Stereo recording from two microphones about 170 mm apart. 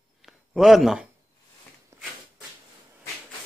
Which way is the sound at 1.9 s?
15° right (ahead or behind).